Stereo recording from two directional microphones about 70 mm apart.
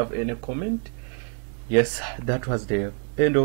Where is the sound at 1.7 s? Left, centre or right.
Right.